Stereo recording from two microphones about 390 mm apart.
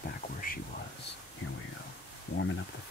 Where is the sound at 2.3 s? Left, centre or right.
Left.